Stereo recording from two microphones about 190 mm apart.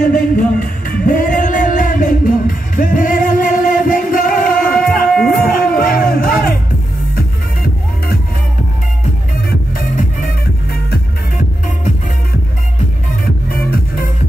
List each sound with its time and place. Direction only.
0.0 s music: 45° left (ahead or behind)
9.8 s music: 45° left (ahead or behind)
13.5 s music: 50° left (ahead or behind)